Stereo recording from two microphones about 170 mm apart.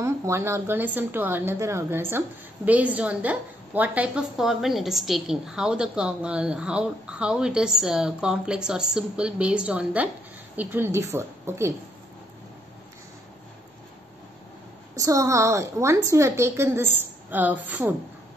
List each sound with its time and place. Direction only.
0.0 s a woman's voice: 15° right (ahead or behind)
15.0 s a woman's voice: 20° right (ahead or behind)